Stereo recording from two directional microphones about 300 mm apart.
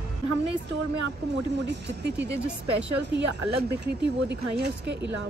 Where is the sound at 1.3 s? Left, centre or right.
Right.